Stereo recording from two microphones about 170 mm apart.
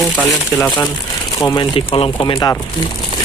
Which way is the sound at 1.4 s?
25° left (ahead or behind).